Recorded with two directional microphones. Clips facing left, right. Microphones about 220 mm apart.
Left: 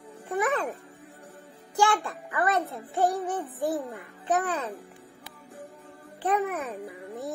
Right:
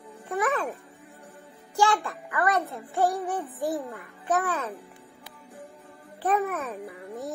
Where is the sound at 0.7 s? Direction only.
15° right (ahead or behind).